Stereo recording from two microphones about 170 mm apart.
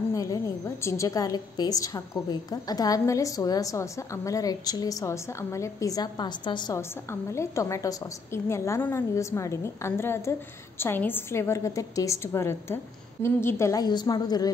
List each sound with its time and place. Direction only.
0.1 s a woman's voice: 20° left (ahead or behind)